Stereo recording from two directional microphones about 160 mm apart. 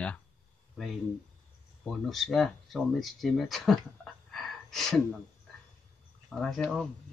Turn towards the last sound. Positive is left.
turn(degrees=0)  # may be behind; listen again after turning